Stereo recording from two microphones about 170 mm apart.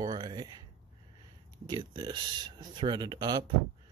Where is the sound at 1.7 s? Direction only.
25° right (ahead or behind).